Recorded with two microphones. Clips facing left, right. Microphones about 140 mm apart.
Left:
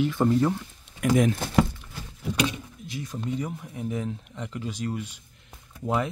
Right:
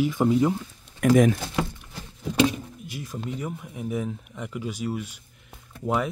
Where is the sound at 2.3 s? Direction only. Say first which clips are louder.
Right 5 dB; 35° right (ahead or behind).